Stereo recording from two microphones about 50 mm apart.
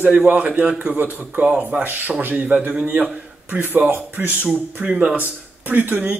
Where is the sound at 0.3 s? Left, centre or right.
Right.